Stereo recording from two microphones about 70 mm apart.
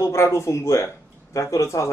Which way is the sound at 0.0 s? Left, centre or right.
Left.